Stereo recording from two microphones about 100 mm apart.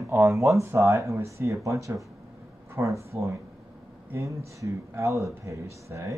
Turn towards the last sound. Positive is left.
turn(degrees=-30)  # may be behind; listen again after turning